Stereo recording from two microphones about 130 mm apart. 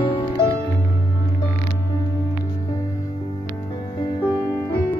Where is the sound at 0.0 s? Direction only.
40° left (ahead or behind).